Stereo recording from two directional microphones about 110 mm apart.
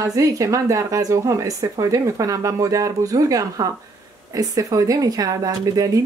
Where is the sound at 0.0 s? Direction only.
30° right (ahead or behind).